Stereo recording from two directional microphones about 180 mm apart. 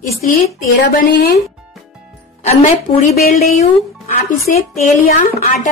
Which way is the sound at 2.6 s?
40° left (ahead or behind).